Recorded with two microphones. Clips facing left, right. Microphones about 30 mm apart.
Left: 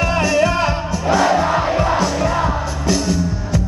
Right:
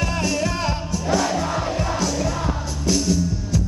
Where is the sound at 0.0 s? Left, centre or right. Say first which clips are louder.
Left 7 dB; left.